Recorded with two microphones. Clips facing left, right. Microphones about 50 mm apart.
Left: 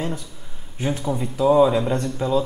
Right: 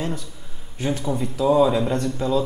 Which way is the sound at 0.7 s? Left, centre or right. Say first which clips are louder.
Even; centre.